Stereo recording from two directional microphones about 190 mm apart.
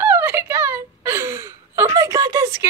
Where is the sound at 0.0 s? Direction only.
10° right (ahead or behind).